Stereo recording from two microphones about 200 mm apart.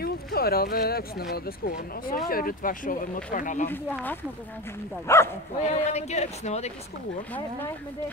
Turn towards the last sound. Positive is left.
turn(degrees=35)  # may be behind; listen again after turning